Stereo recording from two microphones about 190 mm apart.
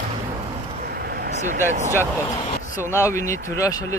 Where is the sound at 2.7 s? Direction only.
15° left (ahead or behind).